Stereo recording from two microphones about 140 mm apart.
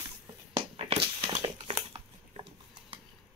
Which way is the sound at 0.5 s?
40° right (ahead or behind).